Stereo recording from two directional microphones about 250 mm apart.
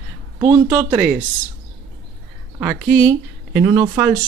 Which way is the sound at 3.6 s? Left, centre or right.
Centre.